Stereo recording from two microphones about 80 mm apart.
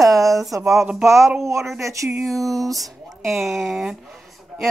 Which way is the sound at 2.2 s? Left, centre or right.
Centre.